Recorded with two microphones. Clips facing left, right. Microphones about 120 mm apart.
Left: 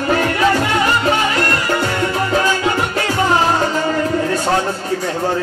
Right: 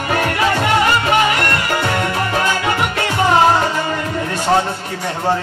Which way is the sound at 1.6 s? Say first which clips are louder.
Left 1 dB; 30° left (ahead or behind).